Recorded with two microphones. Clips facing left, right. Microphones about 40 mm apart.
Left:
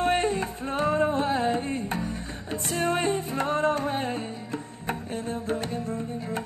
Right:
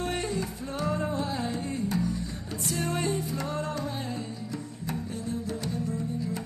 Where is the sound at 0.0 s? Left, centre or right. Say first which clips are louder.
Left 6 dB; left.